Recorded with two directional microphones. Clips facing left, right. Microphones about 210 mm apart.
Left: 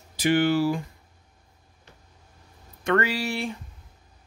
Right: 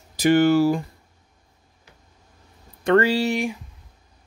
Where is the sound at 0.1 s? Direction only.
45° right (ahead or behind).